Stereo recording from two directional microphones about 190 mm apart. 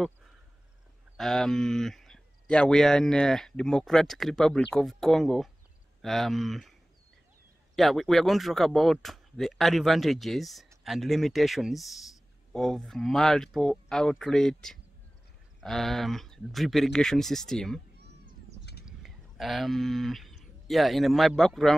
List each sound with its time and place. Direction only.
1.1 s speech: centre (ahead or behind)
7.7 s speech: centre (ahead or behind)
17.9 s meow: 60° right (ahead or behind)
18.9 s speech: centre (ahead or behind)